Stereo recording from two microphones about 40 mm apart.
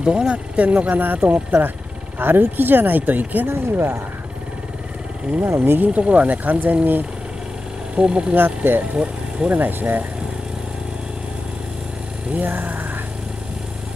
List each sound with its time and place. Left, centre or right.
0.0 s speech: right
0.6 s speech: right
3.4 s speech: right
5.4 s speech: right
5.9 s speech: right
8.0 s speech: right
8.4 s speech: right
8.9 s speech: right
9.6 s speech: right
12.4 s speech: right